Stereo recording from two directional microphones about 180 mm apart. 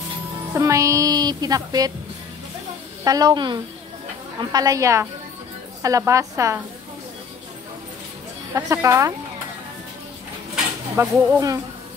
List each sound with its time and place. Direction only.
0.6 s speech: 15° right (ahead or behind)
3.0 s a woman's voice: 20° right (ahead or behind)
8.5 s a woman's voice: 15° right (ahead or behind)
11.0 s a woman's voice: 20° right (ahead or behind)